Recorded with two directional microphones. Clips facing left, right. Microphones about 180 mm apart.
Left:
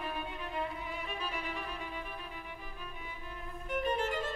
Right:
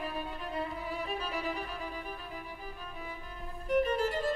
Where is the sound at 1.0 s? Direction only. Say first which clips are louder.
Right 5 dB; 40° right (ahead or behind).